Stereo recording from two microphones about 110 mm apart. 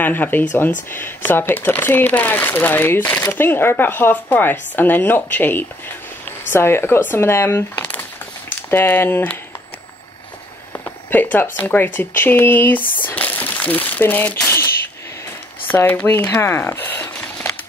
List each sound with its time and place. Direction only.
0.0 s speech: 15° left (ahead or behind)
11.1 s speech: 15° left (ahead or behind)
15.7 s speech: 15° left (ahead or behind)